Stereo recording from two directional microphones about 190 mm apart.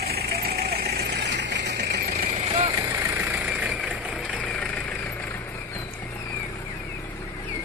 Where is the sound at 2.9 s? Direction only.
10° right (ahead or behind).